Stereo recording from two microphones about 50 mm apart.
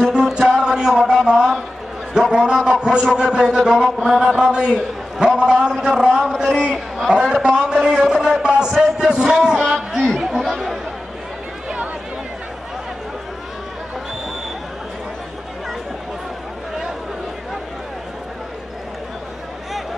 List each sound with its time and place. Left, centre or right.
0.1 s music: centre
2.1 s a sound: centre
3.1 s a man's voice: centre